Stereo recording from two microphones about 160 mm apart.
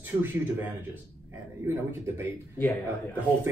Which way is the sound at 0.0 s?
10° right (ahead or behind).